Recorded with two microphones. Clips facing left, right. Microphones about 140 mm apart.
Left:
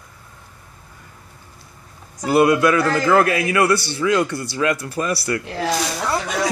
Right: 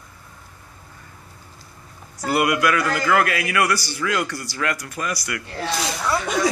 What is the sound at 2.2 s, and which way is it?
Speech, 25° left (ahead or behind).